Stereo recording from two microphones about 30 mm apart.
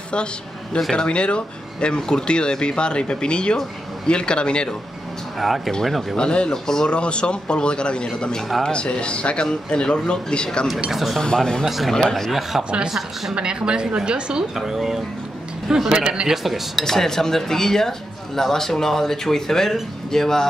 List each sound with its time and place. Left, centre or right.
0.9 s speech: left
6.1 s speech: left
6.5 s speech: centre
6.9 s speech: left
10.9 s speech: centre
11.1 s speech: left
11.6 s speech: centre
11.9 s speech: centre
12.3 s speech: centre
13.3 s a woman's voice: right
14.6 s speech: centre
15.9 s a woman's voice: right
16.4 s speech: centre
16.8 s speech: centre